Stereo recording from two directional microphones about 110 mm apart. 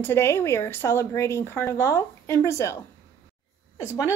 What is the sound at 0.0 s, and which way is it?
A woman's voice, 25° left (ahead or behind).